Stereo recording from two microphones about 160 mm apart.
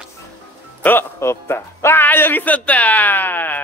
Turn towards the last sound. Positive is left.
turn(degrees=10)  # may be behind; listen again after turning